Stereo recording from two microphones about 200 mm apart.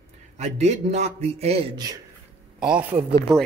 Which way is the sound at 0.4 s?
35° right (ahead or behind).